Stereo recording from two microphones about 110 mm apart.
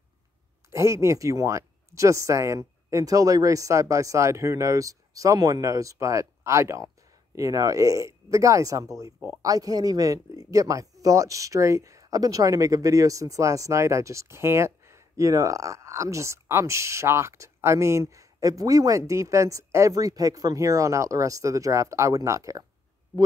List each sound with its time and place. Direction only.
0.7 s speech: 25° right (ahead or behind)